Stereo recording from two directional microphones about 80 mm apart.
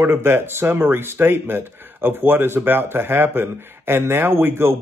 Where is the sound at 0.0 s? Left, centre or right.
Right.